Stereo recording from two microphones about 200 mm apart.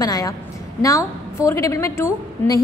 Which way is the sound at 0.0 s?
15° left (ahead or behind).